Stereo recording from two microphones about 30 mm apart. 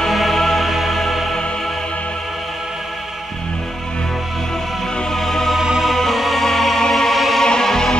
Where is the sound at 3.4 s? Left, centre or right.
Left.